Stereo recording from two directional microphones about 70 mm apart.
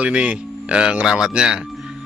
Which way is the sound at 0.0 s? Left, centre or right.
Centre.